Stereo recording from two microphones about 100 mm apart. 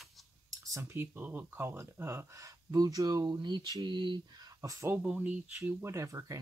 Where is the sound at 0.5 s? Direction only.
30° right (ahead or behind); by 4.2 s 50° right (ahead or behind).